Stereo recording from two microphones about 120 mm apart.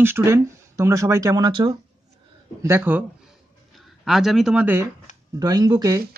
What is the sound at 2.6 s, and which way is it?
Speech, 20° right (ahead or behind).